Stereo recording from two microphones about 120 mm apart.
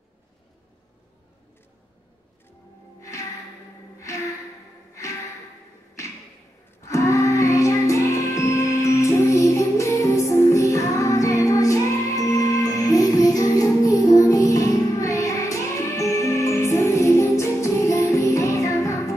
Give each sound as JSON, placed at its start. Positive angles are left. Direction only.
{"t": 3.0, "sound": "music", "side_deg": 25}
{"t": 6.8, "sound": "music", "side_deg": 25}